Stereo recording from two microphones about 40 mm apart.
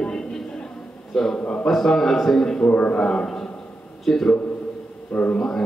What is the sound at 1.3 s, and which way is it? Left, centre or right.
Speech, left.